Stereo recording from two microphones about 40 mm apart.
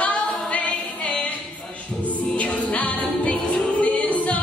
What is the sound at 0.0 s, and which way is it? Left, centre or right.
A capella, left.